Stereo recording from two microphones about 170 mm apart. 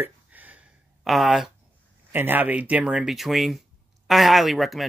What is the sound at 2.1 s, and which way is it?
Speech, 10° right (ahead or behind).